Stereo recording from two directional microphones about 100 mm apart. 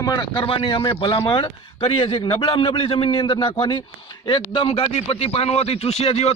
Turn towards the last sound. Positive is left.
turn(degrees=90)